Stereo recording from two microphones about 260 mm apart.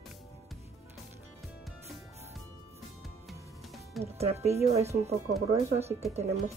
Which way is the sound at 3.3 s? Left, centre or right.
Centre.